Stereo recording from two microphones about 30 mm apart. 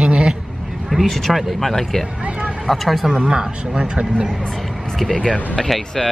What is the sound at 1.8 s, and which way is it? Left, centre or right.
Speech, centre.